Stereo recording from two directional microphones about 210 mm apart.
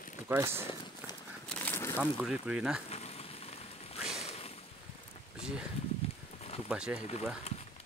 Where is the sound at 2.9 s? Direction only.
30° left (ahead or behind).